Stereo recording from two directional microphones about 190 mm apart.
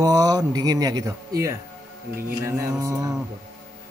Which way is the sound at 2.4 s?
15° right (ahead or behind).